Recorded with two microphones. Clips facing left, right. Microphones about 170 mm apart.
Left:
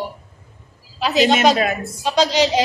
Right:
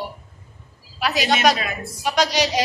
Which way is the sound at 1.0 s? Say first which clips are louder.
Left 4 dB; 25° left (ahead or behind).